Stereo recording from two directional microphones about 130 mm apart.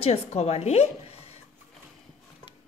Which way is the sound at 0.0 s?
55° left (ahead or behind).